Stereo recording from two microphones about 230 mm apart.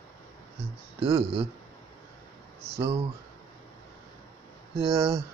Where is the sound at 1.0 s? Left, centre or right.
Right.